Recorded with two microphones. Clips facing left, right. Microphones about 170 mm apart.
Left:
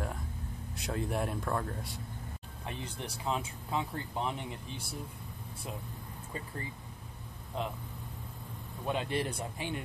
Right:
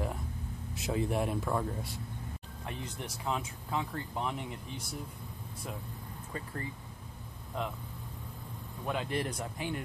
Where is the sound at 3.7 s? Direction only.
20° left (ahead or behind).